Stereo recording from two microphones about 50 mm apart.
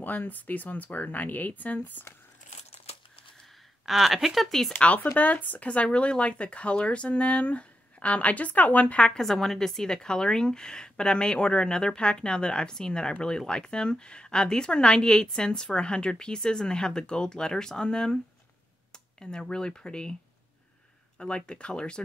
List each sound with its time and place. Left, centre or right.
0.0 s speech: left
3.8 s speech: centre
4.7 s speech: left
9.1 s speech: centre
21.2 s speech: centre